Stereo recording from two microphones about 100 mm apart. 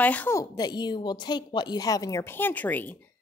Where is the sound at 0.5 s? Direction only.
45° left (ahead or behind).